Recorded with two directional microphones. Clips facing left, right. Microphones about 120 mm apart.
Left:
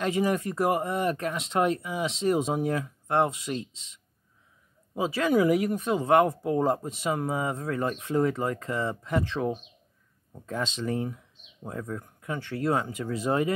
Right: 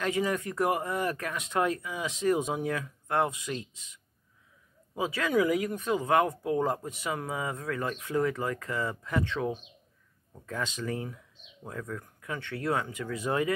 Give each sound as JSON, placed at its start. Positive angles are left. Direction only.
{"t": 0.0, "sound": "speech", "side_deg": 25}